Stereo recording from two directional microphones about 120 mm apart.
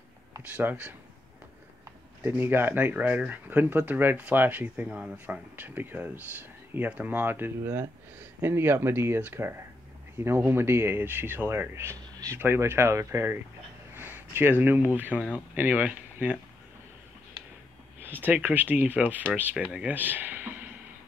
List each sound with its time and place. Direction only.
0.6 s speech: 15° right (ahead or behind)
2.2 s speech: 20° right (ahead or behind)
18.0 s speech: 15° right (ahead or behind)